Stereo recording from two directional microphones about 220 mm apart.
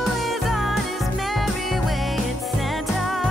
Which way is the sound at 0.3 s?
Centre (ahead or behind).